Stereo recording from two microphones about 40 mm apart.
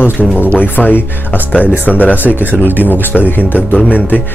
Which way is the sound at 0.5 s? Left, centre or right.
Left.